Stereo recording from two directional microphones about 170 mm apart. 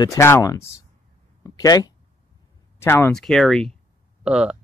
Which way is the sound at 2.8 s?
15° left (ahead or behind).